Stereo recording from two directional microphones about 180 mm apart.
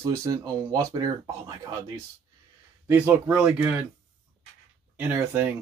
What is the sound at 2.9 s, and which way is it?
Speech, 10° right (ahead or behind).